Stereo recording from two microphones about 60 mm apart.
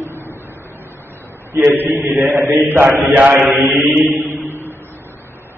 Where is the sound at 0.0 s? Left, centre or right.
Left.